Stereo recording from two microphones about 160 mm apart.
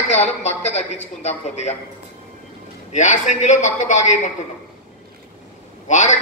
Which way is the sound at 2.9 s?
50° left (ahead or behind).